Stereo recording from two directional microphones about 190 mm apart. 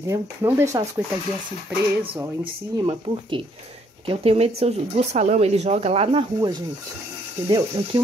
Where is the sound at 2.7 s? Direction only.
25° right (ahead or behind).